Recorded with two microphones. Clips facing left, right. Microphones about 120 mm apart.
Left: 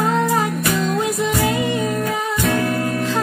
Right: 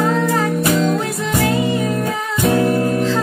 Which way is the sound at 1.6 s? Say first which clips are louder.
Right 2 dB; 20° right (ahead or behind).